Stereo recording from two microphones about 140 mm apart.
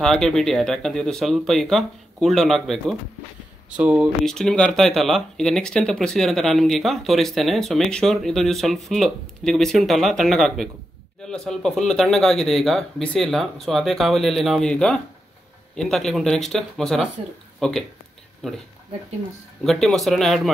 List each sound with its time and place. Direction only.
0.0 s speech: 5° left (ahead or behind)
3.7 s speech: 10° right (ahead or behind)
4.3 s speech: 5° left (ahead or behind)
19.6 s speech: centre (ahead or behind)